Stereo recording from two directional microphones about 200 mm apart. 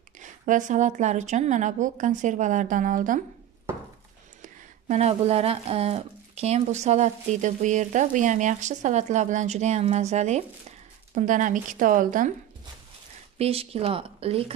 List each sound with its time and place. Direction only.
0.2 s speech: 40° right (ahead or behind)
4.4 s speech: 35° right (ahead or behind)
13.4 s a woman's voice: 30° right (ahead or behind)